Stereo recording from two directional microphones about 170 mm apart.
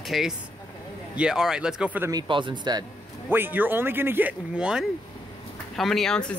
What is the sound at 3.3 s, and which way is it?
Speech, 10° right (ahead or behind).